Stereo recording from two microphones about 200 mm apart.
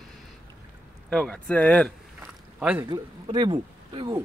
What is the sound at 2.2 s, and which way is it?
Boat, 5° right (ahead or behind).